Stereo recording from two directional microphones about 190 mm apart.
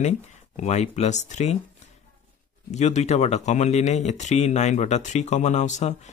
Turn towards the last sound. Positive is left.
turn(degrees=40)  # may be behind; listen again after turning